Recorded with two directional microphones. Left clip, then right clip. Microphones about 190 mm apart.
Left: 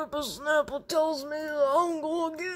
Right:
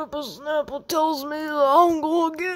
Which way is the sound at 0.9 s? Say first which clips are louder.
Right 5 dB; 25° right (ahead or behind).